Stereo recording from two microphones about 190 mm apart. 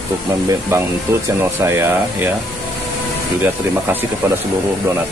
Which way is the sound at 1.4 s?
15° right (ahead or behind).